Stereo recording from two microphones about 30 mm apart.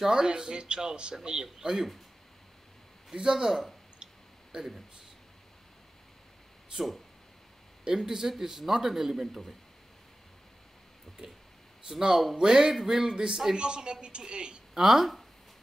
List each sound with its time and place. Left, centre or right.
0.1 s speech: right
3.2 s speech: right
4.5 s speech: centre
6.7 s a woman's voice: right
7.9 s a man's voice: centre
11.2 s speech: right
13.6 s a woman's voice: right
14.7 s speech: centre